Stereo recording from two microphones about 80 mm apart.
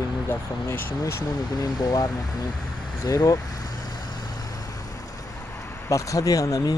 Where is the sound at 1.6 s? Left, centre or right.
Left.